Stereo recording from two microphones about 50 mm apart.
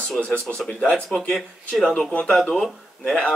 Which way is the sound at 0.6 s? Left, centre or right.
Centre.